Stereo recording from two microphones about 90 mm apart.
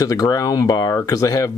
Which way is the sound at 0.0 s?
40° left (ahead or behind).